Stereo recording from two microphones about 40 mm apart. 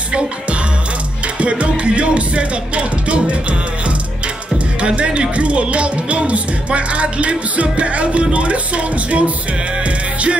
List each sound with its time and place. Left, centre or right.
1.2 s speech: right